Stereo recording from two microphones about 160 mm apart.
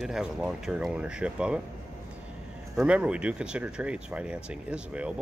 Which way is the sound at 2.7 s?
5° right (ahead or behind).